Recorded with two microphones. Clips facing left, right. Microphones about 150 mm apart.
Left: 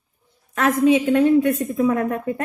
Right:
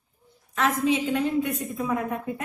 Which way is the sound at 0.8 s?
50° left (ahead or behind).